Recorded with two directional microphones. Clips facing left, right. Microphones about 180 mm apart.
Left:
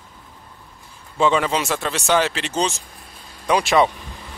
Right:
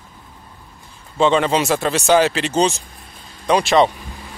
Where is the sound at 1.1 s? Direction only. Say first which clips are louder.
Right 3 dB; 25° right (ahead or behind).